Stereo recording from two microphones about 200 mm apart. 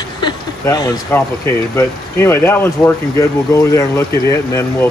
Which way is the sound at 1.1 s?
10° left (ahead or behind).